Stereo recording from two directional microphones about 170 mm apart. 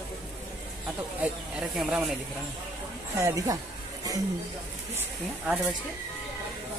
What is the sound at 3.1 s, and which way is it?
Speech, 20° right (ahead or behind).